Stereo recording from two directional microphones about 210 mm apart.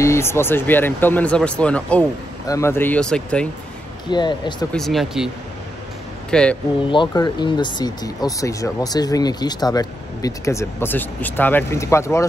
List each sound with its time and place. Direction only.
0.0 s speech: 10° left (ahead or behind)
4.1 s speech: 20° left (ahead or behind)
4.7 s speech: centre (ahead or behind)
6.3 s speech: 5° left (ahead or behind)
6.9 s speech: 20° left (ahead or behind)